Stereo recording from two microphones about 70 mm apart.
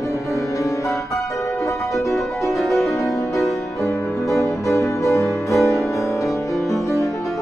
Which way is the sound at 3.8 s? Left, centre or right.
Left.